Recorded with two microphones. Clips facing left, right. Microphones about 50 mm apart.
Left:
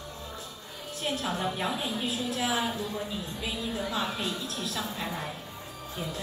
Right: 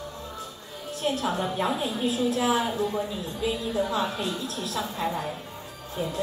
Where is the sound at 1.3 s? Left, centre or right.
Right.